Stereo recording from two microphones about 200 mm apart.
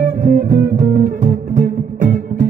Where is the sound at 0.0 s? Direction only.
40° right (ahead or behind).